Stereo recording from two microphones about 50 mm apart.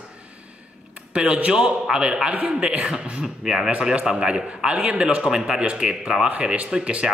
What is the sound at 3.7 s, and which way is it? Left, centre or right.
A man's voice, right.